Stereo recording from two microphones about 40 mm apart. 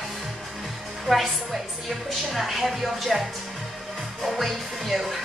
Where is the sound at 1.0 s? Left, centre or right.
Centre.